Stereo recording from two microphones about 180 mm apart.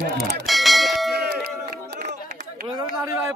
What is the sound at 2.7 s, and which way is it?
Speech, 20° right (ahead or behind).